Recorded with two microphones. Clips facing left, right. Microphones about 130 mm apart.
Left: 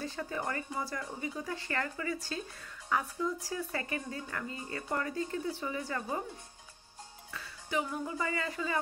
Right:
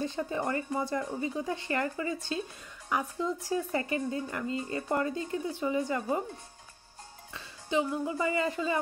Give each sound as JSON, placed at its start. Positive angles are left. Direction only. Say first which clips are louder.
{"t": 0.0, "sound": "speech", "louder": "right 5 dB", "side_deg": -20}
{"t": 7.3, "sound": "speech", "louder": "right 5 dB", "side_deg": -20}